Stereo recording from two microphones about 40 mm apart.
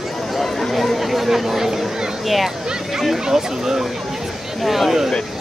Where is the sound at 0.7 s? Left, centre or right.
Centre.